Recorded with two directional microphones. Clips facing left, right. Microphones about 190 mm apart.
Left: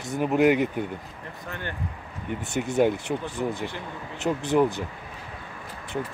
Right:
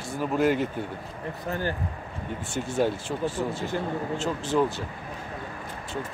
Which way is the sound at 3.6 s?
45° right (ahead or behind).